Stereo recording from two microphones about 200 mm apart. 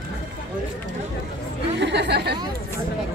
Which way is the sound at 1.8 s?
60° right (ahead or behind).